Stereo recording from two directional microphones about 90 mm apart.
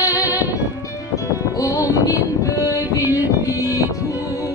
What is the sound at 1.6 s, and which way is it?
Music, 40° left (ahead or behind).